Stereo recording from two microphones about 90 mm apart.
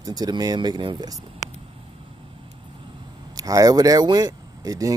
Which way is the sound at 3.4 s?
40° right (ahead or behind).